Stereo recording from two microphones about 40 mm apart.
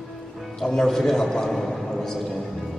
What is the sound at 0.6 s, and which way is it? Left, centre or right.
A man's voice, centre.